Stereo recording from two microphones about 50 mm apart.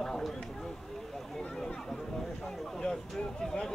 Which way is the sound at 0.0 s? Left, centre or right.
Centre.